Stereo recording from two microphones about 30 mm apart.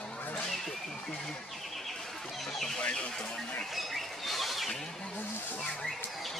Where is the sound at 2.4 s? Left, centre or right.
Centre.